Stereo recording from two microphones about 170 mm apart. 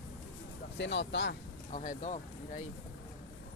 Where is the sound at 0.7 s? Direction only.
90° left.